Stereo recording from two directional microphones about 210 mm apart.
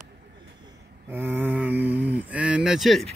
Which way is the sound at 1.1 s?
10° right (ahead or behind).